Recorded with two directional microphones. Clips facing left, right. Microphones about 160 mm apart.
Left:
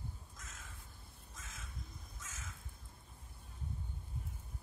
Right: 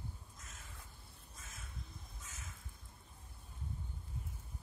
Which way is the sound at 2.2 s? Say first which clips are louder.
Left 4 dB; 90° left.